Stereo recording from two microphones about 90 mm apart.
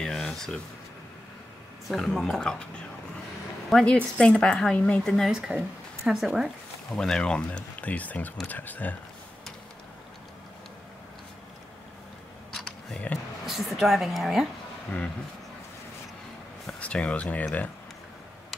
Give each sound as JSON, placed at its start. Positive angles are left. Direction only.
{"t": 0.0, "sound": "a sound", "side_deg": 5}
{"t": 1.9, "sound": "a woman's voice", "side_deg": 0}
{"t": 3.7, "sound": "speech", "side_deg": 10}
{"t": 5.1, "sound": "a woman's voice", "side_deg": 0}
{"t": 7.0, "sound": "speech", "side_deg": 10}
{"t": 12.5, "sound": "camera", "side_deg": 10}
{"t": 13.5, "sound": "a woman's voice", "side_deg": 0}
{"t": 16.8, "sound": "speech", "side_deg": 15}